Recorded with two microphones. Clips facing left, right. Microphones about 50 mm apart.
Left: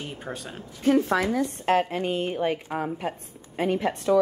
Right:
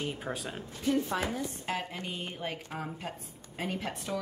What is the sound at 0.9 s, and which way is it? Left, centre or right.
Speech, left.